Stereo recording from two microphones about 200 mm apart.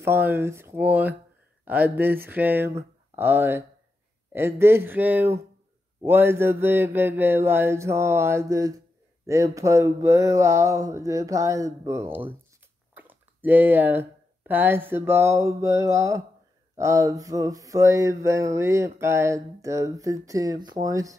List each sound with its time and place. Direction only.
0.0 s mantra: 10° right (ahead or behind)
12.9 s speech: 10° right (ahead or behind)
16.7 s mantra: 15° right (ahead or behind)